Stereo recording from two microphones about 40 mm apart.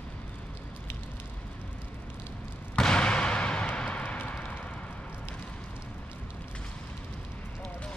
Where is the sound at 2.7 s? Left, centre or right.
Left.